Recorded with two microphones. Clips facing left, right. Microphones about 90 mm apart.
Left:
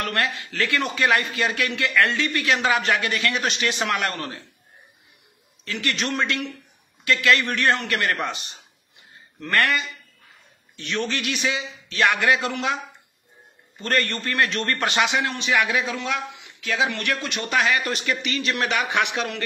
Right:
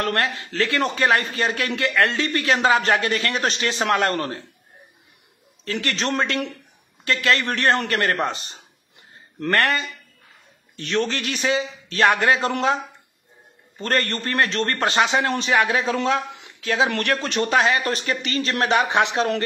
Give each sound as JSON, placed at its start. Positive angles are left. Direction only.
{"t": 0.0, "sound": "a man's voice", "side_deg": -35}
{"t": 5.7, "sound": "a man's voice", "side_deg": -35}